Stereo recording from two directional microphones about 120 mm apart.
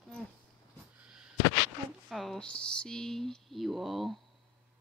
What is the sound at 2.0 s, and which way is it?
Speech, centre (ahead or behind).